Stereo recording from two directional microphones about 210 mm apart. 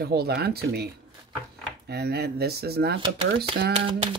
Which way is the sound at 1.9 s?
50° right (ahead or behind).